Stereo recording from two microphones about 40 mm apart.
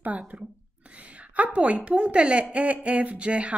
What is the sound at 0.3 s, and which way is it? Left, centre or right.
A woman's voice, right.